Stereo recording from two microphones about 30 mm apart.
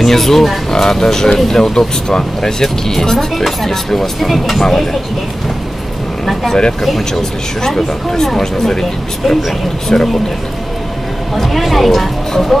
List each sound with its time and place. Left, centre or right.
0.0 s speech: centre
6.2 s vehicle: centre
7.2 s speech: centre
9.8 s speech: centre
11.3 s speech: centre